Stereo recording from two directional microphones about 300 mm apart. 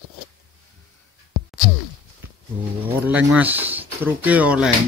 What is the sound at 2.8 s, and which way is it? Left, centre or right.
Speech, centre.